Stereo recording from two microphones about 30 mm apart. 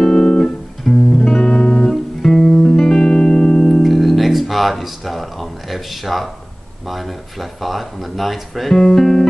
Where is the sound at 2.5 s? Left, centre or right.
Left.